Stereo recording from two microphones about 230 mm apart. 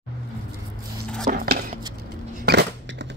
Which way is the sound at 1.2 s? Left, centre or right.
Right.